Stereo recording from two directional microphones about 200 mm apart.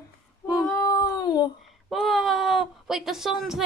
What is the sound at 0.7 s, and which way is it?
Speech, 15° left (ahead or behind).